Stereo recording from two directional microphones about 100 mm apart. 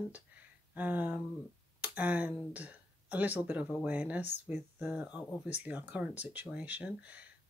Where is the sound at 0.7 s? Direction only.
15° right (ahead or behind).